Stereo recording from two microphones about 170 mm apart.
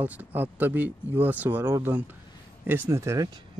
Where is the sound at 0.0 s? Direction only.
10° right (ahead or behind).